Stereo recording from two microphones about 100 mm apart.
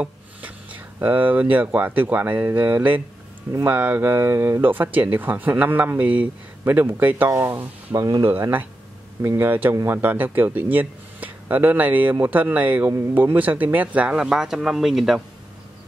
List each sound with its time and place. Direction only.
0.0 s speech: 15° right (ahead or behind); by 8.3 s 35° right (ahead or behind)
8.3 s speech: 20° right (ahead or behind); by 15.2 s centre (ahead or behind)